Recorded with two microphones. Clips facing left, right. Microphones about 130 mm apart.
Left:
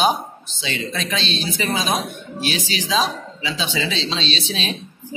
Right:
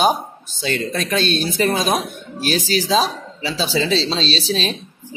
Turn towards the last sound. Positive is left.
turn(degrees=-35)  # may be behind; listen again after turning